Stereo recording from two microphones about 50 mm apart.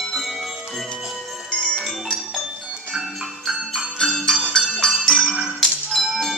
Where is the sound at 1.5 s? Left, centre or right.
Centre.